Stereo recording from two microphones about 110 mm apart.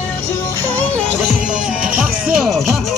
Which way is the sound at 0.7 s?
15° left (ahead or behind).